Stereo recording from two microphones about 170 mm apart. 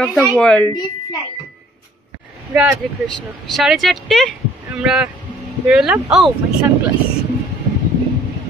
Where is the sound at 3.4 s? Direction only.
Centre (ahead or behind).